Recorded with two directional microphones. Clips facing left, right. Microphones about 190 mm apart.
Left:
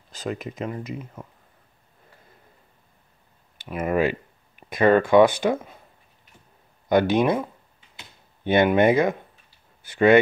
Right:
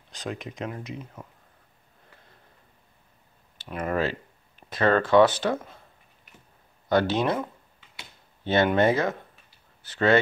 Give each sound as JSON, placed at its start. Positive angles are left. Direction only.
{"t": 0.1, "sound": "speech", "side_deg": 0}
{"t": 3.5, "sound": "speech", "side_deg": 10}
{"t": 6.9, "sound": "speech", "side_deg": 15}
{"t": 8.5, "sound": "speech", "side_deg": 15}